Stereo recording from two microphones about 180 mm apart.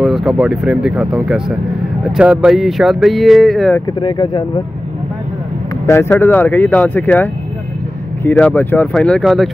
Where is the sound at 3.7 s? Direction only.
25° left (ahead or behind).